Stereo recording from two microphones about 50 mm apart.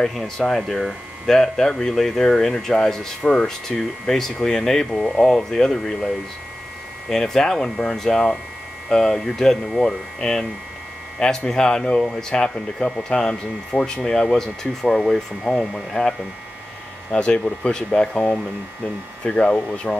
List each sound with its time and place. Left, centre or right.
0.4 s speech: centre
11.1 s speech: centre